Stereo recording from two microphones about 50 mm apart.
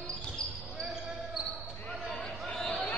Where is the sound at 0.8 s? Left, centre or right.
Centre.